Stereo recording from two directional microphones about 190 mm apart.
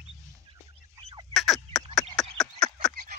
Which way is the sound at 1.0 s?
30° right (ahead or behind).